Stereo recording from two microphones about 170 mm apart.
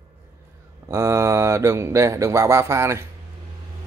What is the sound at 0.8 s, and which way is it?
Speech, 15° right (ahead or behind).